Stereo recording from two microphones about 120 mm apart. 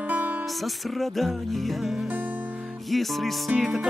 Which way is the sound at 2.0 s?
15° right (ahead or behind).